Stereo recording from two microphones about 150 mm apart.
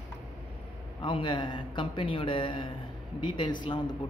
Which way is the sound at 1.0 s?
35° left (ahead or behind).